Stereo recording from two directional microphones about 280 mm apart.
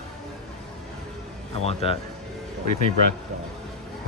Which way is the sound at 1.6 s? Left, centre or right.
Left.